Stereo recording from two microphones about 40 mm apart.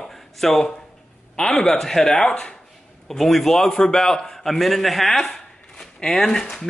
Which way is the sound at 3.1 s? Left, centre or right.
Centre.